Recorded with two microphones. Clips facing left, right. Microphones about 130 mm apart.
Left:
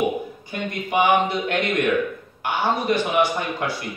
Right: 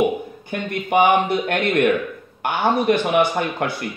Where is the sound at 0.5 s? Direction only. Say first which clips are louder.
Right 5 dB; 55° right (ahead or behind).